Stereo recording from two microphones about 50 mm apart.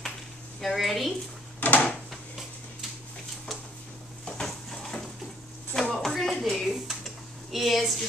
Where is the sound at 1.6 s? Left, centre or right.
Left.